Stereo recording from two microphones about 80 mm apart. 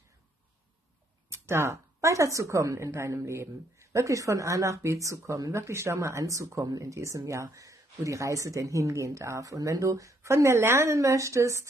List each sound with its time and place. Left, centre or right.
1.3 s speech: right